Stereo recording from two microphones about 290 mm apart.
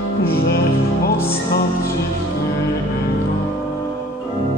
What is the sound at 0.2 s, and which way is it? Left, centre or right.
Music, left.